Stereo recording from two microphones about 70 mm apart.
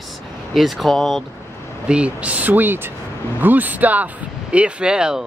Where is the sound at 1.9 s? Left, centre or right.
Centre.